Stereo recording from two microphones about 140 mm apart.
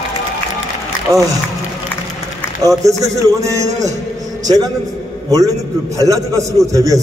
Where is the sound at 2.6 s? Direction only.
25° right (ahead or behind).